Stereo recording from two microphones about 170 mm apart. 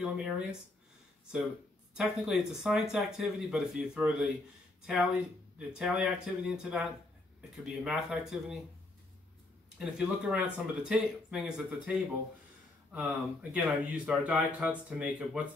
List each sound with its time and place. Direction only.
0.0 s speech: 5° right (ahead or behind)
2.0 s speech: 5° right (ahead or behind)
9.8 s speech: 5° right (ahead or behind)